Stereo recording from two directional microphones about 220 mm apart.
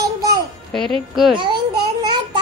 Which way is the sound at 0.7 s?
Centre (ahead or behind).